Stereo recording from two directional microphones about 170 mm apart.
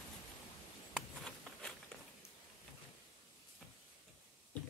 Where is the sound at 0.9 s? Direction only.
5° left (ahead or behind).